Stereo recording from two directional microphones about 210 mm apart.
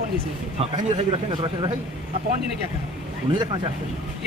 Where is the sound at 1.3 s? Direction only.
20° right (ahead or behind).